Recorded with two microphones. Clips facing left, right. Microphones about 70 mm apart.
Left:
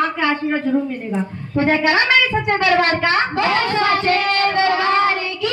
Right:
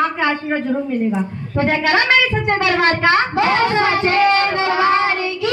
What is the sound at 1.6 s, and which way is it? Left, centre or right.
Speech, centre.